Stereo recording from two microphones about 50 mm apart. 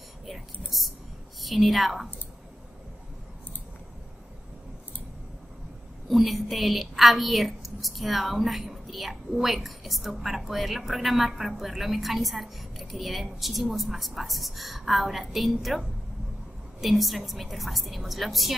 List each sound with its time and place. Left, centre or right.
0.3 s a woman's voice: centre
6.0 s a woman's voice: centre